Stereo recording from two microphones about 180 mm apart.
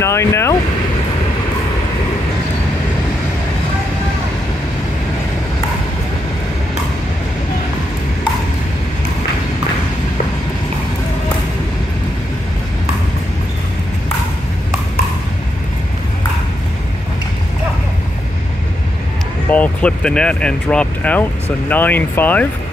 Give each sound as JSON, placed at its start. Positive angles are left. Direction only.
{"t": 0.0, "sound": "speech", "side_deg": 15}
{"t": 19.5, "sound": "speech", "side_deg": 5}